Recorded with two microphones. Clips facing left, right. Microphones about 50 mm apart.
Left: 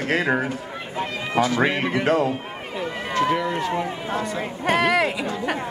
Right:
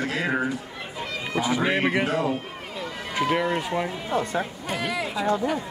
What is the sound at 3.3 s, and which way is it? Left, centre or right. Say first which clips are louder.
Speech: left 1 dB; right.